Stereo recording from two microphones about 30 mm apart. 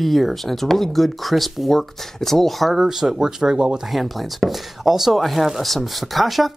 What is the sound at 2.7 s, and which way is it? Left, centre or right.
Speech, centre.